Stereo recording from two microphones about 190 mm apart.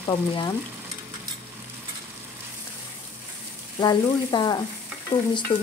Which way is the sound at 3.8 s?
20° left (ahead or behind).